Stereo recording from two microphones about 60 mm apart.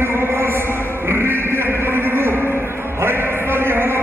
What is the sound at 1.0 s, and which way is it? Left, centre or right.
Music, right.